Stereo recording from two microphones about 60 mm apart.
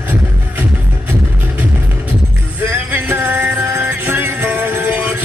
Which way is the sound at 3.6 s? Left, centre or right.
Right.